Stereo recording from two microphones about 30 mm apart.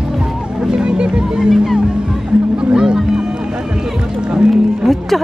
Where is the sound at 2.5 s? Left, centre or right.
Right.